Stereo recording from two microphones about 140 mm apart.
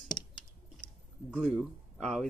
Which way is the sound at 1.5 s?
Centre (ahead or behind).